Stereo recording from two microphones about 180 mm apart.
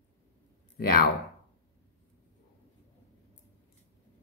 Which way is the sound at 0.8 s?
55° left (ahead or behind).